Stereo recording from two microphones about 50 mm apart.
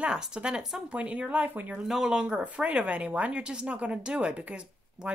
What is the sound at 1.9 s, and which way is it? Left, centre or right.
Speech, centre.